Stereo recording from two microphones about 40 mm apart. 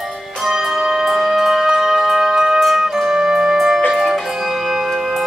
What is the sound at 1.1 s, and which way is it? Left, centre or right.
Music, centre.